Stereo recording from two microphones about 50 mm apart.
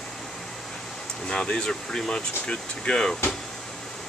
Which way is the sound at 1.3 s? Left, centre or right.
Centre.